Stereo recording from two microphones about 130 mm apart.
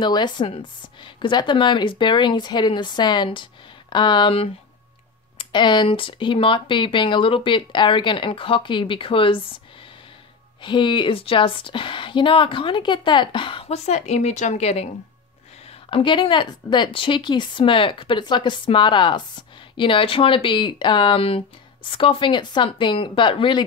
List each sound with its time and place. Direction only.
0.0 s speech: 35° left (ahead or behind)